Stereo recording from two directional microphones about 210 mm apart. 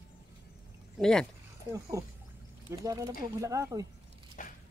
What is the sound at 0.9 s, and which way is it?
Speech, 5° left (ahead or behind).